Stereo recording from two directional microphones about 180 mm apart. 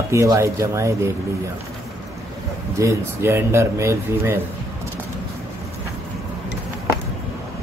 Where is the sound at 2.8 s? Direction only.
15° right (ahead or behind).